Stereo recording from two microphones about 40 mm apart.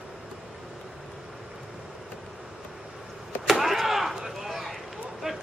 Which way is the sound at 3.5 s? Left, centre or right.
Centre.